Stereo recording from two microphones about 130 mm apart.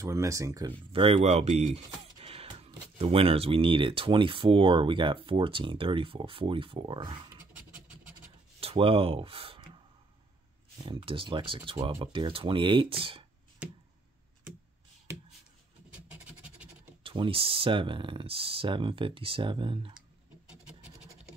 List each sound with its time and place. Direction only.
0.0 s speech: 25° right (ahead or behind)
0.7 s speech: 45° right (ahead or behind)
3.0 s speech: 45° right (ahead or behind)
8.5 s speech: 45° right (ahead or behind)
10.8 s speech: 40° right (ahead or behind)
13.6 s a sound: 10° right (ahead or behind)
15.9 s scratch: 10° right (ahead or behind)
17.0 s speech: 45° right (ahead or behind)